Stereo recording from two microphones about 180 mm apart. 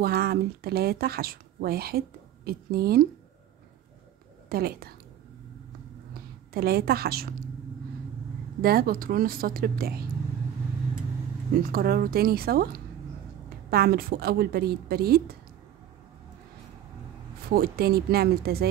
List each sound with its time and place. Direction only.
0.0 s speech: 60° right (ahead or behind)
4.5 s speech: 60° right (ahead or behind)
6.5 s speech: 60° right (ahead or behind)
8.5 s speech: 55° right (ahead or behind)
11.6 s speech: 55° right (ahead or behind)
17.5 s speech: 60° right (ahead or behind)